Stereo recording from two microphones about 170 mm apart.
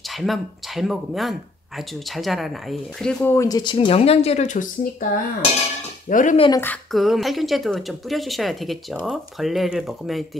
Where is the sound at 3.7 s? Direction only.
35° left (ahead or behind); by 6.3 s 50° left (ahead or behind).